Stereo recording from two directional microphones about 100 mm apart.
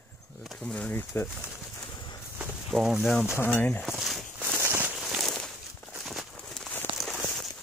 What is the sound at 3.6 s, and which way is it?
Speech, 15° left (ahead or behind).